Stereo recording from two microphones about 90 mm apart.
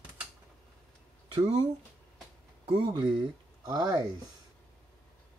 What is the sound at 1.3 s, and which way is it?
Speech, 65° right (ahead or behind).